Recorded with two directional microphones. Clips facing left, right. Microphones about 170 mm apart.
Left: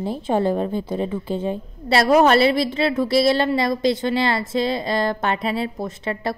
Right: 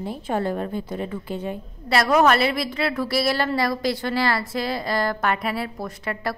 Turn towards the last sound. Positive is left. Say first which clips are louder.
# left 3 dB
turn(degrees=25)  # may be behind; listen again after turning